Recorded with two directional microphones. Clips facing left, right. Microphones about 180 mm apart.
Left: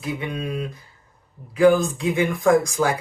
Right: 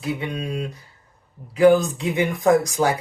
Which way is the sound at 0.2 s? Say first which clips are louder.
Even; 25° right (ahead or behind).